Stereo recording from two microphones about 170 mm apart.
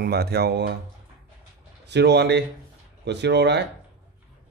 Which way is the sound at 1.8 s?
80° right.